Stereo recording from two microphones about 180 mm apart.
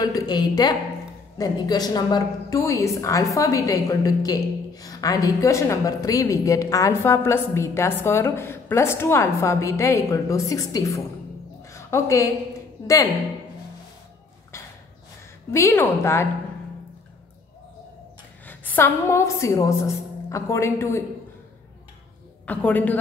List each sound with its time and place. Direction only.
0.0 s a sound: 20° left (ahead or behind)
1.4 s a woman's voice: 20° left (ahead or behind)
11.7 s a sound: 15° left (ahead or behind)
12.8 s speech: 20° left (ahead or behind)
15.5 s a woman's voice: 15° left (ahead or behind)
18.5 s a woman's voice: 10° left (ahead or behind)
22.5 s a woman's voice: 10° left (ahead or behind)